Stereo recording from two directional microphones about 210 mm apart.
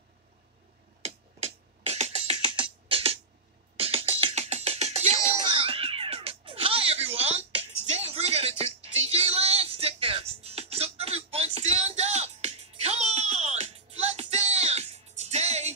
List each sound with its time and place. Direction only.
1.0 s music: 30° right (ahead or behind)